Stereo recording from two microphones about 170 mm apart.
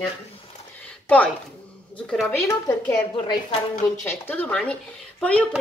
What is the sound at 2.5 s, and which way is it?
Speech, 15° left (ahead or behind).